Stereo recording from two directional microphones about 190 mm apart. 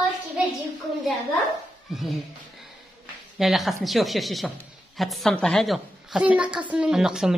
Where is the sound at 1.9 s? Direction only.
Centre (ahead or behind).